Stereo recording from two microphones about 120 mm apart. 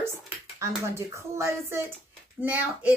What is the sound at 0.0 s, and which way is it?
Speech, 25° right (ahead or behind).